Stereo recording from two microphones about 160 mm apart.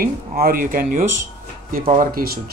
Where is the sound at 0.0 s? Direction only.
65° right (ahead or behind).